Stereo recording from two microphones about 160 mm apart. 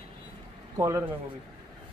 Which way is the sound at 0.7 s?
20° right (ahead or behind).